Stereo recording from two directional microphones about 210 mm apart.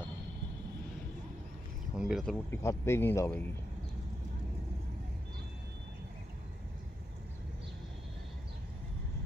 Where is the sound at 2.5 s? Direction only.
15° left (ahead or behind).